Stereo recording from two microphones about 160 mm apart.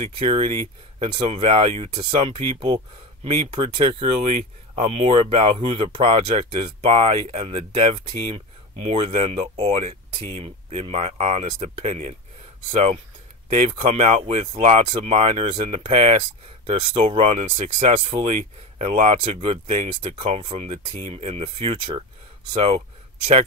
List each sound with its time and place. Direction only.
0.0 s speech: 30° right (ahead or behind); by 12.2 s 45° right (ahead or behind)
13.8 s speech: 45° right (ahead or behind)
17.5 s speech: 55° right (ahead or behind)
19.2 s speech: 35° right (ahead or behind)